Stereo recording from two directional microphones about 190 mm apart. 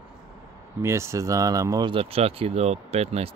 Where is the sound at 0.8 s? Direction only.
15° right (ahead or behind).